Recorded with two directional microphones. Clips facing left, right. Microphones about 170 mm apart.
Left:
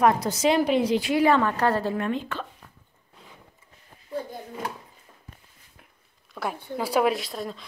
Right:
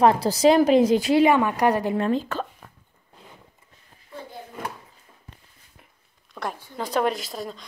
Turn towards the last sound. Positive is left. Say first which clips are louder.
# left 1 dB
turn(degrees=0)  # may be behind; listen again after turning